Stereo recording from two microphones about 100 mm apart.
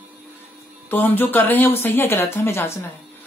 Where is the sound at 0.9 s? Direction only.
20° left (ahead or behind).